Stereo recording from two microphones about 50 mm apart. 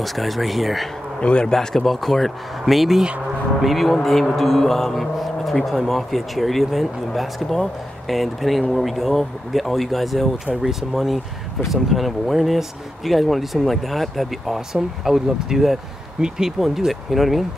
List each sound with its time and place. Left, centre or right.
0.0 s speech: centre
1.2 s a man's voice: left; by 17.5 s centre